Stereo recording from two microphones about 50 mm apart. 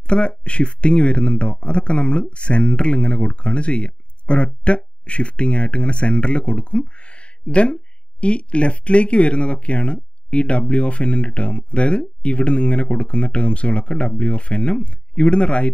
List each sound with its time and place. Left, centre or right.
0.0 s speech: left